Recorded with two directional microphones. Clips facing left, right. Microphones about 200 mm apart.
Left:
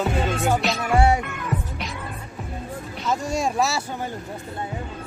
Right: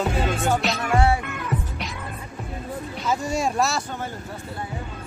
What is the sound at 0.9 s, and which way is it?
Music, 15° left (ahead or behind).